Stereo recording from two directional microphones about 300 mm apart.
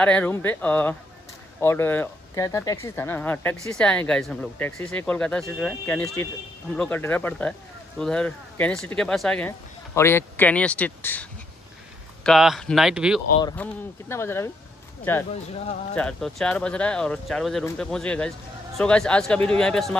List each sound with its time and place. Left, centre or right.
0.0 s speech: centre
13.4 s speech: centre
15.3 s speech: centre
15.9 s speech: centre